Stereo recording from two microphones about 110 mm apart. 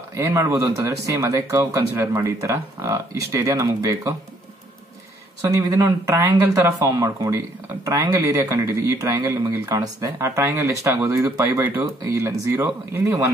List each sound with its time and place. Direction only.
0.1 s speech: 25° right (ahead or behind)
5.8 s speech: 25° right (ahead or behind)